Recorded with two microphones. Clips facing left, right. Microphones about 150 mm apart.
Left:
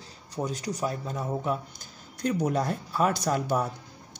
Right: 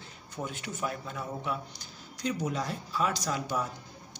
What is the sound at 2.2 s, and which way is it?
Speech, 55° left (ahead or behind).